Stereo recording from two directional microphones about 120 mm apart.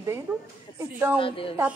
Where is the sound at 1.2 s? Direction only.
50° left (ahead or behind).